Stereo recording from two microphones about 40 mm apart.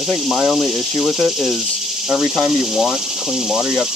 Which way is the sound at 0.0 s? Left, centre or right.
Centre.